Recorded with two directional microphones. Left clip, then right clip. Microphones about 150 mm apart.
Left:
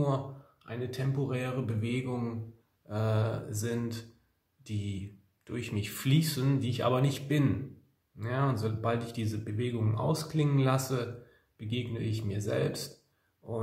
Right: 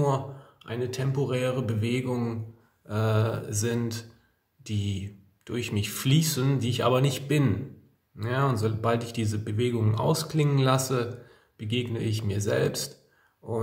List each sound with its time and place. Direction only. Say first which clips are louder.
0.7 s speech: right 6 dB; 25° right (ahead or behind)
5.4 s speech: right 6 dB; 20° right (ahead or behind)